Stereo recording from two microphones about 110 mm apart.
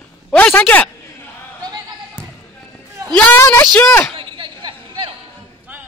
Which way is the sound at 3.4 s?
25° left (ahead or behind).